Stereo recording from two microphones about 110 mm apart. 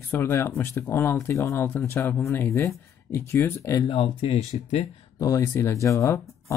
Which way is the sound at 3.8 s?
60° left (ahead or behind).